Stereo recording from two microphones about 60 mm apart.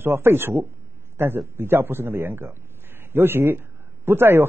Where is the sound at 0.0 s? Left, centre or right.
Right.